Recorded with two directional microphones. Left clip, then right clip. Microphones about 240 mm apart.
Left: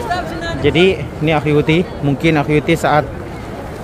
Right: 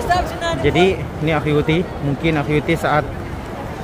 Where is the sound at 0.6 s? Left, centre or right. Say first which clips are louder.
Left 4 dB; centre.